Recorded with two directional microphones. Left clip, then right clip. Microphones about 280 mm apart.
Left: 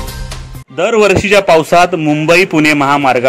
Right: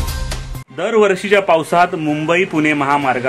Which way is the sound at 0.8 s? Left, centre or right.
Centre.